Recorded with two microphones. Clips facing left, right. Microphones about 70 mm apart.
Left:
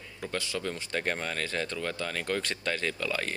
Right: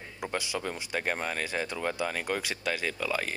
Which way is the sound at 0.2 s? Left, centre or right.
Centre.